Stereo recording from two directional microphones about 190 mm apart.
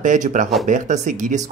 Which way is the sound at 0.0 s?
40° right (ahead or behind).